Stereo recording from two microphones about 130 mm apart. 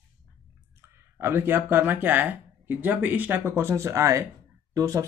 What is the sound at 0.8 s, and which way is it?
Speech, 20° right (ahead or behind).